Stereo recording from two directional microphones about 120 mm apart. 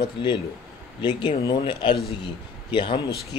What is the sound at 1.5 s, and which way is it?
Speech, 40° left (ahead or behind).